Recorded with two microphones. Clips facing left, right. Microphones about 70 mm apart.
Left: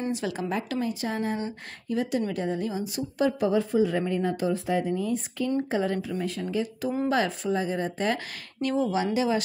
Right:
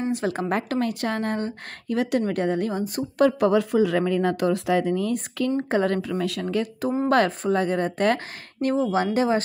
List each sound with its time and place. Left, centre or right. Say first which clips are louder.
0.1 s speech: right 4 dB; right
3.3 s speech: right 4 dB; right
5.6 s speech: right 4 dB; right
7.1 s speech: right 6 dB; right